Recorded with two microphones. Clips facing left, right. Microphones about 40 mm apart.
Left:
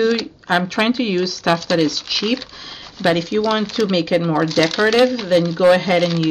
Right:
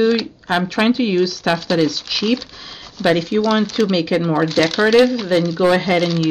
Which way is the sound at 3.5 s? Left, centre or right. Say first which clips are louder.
Right 2 dB; centre.